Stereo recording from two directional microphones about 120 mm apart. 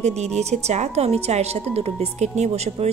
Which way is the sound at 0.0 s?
65° right (ahead or behind).